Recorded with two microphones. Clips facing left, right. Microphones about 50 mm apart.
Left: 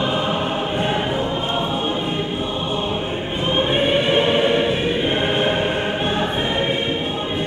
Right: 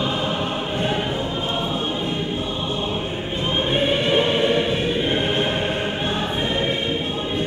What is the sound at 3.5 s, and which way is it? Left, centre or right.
Choir, centre.